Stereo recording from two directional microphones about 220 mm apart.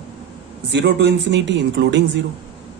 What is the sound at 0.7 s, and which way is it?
A man's voice, 50° right (ahead or behind).